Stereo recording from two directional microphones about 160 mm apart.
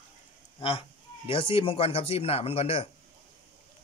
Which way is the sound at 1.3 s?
35° left (ahead or behind).